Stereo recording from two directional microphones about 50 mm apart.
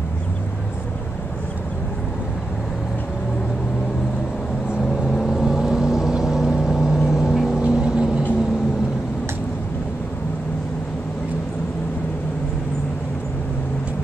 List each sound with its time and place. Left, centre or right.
5.1 s vehicle: centre